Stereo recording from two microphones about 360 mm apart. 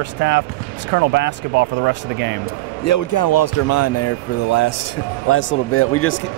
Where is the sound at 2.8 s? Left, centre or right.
Left.